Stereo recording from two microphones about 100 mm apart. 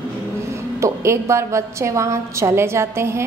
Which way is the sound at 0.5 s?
30° right (ahead or behind).